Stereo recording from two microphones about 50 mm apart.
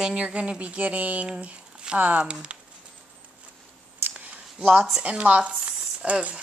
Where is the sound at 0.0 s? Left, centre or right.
Centre.